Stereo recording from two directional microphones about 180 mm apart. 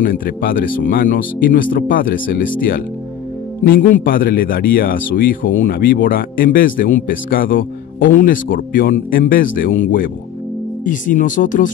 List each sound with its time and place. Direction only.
0.0 s speech: 50° left (ahead or behind)